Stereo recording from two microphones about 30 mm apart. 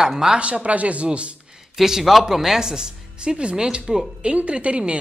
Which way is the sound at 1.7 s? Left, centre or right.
Centre.